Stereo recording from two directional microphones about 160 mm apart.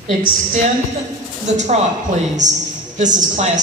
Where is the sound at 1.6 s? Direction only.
45° right (ahead or behind).